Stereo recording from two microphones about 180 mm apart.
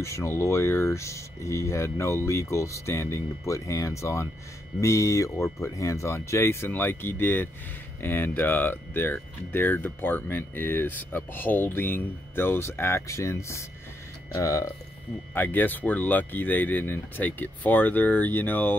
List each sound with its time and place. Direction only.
0.0 s speech: 15° left (ahead or behind)